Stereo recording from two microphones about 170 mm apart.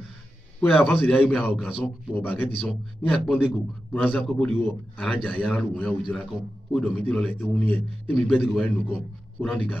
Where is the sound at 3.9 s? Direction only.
5° left (ahead or behind).